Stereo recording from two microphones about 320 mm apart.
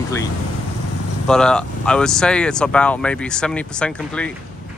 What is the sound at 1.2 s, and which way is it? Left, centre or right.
Speech, centre.